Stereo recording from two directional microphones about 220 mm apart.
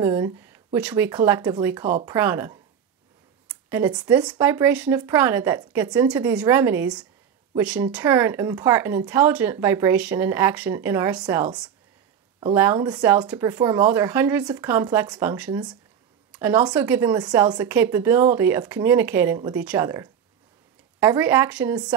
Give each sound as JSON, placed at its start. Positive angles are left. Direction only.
{"t": 0.0, "sound": "speech", "side_deg": -15}
{"t": 3.4, "sound": "a sound", "side_deg": -10}
{"t": 3.9, "sound": "speech", "side_deg": -20}
{"t": 11.2, "sound": "speech", "side_deg": -20}
{"t": 12.7, "sound": "speech", "side_deg": -20}
{"t": 13.0, "sound": "speech", "side_deg": -5}
{"t": 16.3, "sound": "a sound", "side_deg": -10}
{"t": 16.7, "sound": "speech", "side_deg": -5}